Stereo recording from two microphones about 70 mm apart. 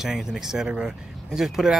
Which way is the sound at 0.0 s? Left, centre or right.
Centre.